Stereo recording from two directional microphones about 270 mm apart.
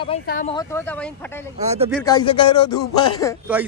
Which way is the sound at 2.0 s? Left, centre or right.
Centre.